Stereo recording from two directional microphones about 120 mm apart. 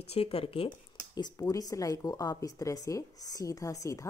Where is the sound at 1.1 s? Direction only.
30° left (ahead or behind).